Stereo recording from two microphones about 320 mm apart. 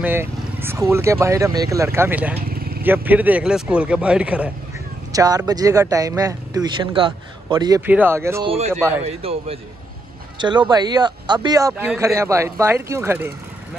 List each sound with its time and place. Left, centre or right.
0.0 s speech: centre
2.3 s vehicle: right
2.8 s speech: centre